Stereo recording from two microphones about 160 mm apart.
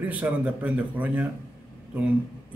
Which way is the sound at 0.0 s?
10° right (ahead or behind).